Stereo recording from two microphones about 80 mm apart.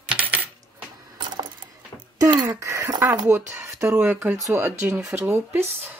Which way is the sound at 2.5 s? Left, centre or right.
Right.